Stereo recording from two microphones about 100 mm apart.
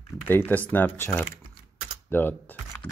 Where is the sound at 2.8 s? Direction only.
20° right (ahead or behind).